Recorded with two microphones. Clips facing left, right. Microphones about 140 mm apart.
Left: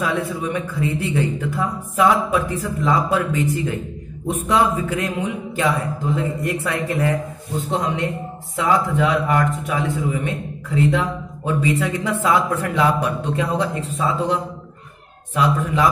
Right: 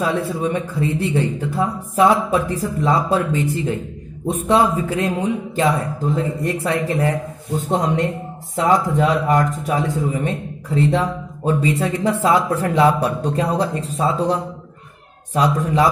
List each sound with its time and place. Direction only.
0.0 s a man's voice: 30° right (ahead or behind)
7.7 s a man's voice: 45° right (ahead or behind)